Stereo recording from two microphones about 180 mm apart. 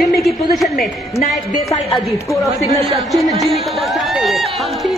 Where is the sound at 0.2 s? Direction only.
Centre (ahead or behind).